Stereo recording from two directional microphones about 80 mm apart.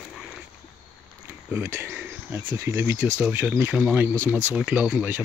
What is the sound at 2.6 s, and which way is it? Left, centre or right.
Speech, right.